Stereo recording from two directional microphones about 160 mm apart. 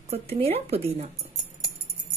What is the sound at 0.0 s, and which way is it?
Speech, 40° right (ahead or behind).